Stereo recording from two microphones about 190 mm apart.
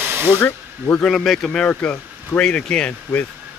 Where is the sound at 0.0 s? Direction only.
10° right (ahead or behind).